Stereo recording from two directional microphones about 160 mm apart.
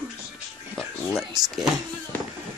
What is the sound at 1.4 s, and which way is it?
Speech, 25° right (ahead or behind).